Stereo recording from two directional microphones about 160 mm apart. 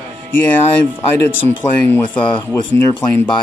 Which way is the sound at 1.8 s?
10° left (ahead or behind).